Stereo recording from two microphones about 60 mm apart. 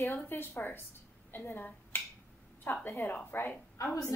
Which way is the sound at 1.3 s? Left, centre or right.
Left.